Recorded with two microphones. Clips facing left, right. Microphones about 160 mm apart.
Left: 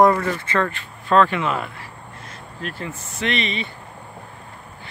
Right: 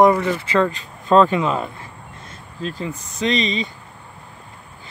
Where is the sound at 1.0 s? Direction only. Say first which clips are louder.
Right 3 dB; 20° right (ahead or behind).